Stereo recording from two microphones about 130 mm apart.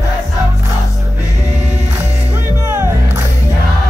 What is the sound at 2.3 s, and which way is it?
Music, 15° right (ahead or behind).